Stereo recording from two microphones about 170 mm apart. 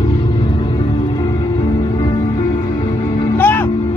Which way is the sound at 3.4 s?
10° left (ahead or behind).